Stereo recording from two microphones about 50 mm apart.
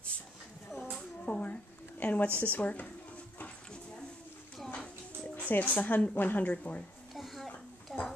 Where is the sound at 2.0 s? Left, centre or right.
Left.